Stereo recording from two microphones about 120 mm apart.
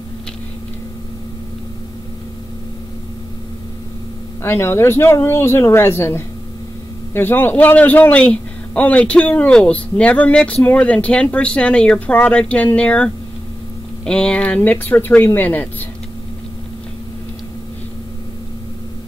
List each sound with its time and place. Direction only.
4.4 s a man's voice: 20° left (ahead or behind)